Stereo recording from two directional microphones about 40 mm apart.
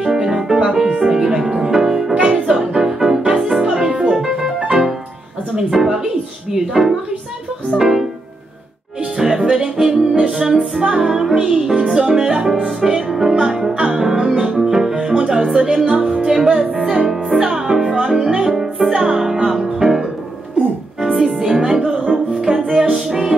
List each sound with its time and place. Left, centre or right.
0.0 s music: centre
4.2 s piano: centre
4.6 s music: centre
9.1 s music: centre
14.1 s music: right
14.4 s music: centre
21.3 s music: centre